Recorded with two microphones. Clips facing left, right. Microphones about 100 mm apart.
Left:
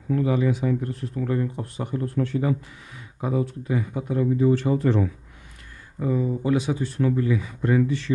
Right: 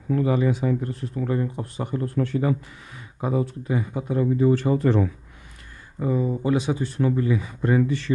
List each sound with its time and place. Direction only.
0.1 s speech: 35° right (ahead or behind)
1.9 s speech: 45° right (ahead or behind)
3.2 s speech: 30° right (ahead or behind)
4.4 s speech: 45° right (ahead or behind)
5.9 s speech: 25° right (ahead or behind)